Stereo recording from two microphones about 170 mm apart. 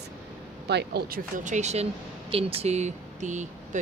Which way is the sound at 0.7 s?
75° right (ahead or behind).